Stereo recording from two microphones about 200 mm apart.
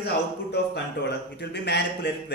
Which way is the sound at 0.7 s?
60° left (ahead or behind).